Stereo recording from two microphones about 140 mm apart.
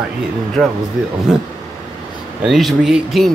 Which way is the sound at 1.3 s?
5° right (ahead or behind).